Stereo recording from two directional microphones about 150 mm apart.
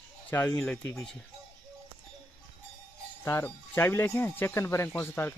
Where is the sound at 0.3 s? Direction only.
15° left (ahead or behind).